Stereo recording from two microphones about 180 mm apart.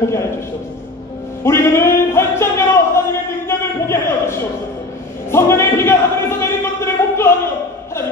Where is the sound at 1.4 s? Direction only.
15° left (ahead or behind).